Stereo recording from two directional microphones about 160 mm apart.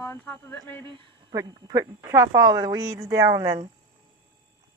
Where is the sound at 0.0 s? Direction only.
15° left (ahead or behind).